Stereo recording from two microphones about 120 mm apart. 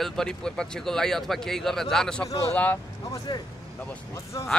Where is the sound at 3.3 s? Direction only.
40° left (ahead or behind).